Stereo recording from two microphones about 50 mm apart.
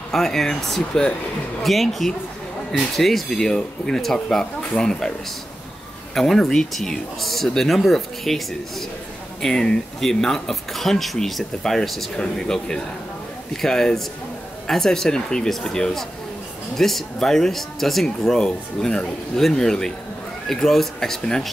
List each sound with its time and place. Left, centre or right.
0.1 s speech: centre
6.1 s speech: centre